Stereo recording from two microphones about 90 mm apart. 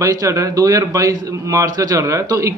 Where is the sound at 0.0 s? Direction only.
40° right (ahead or behind).